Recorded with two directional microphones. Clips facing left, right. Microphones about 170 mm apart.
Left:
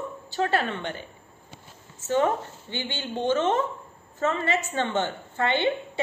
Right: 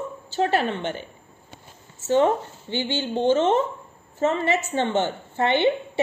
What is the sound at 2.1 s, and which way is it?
A woman's voice, 30° right (ahead or behind).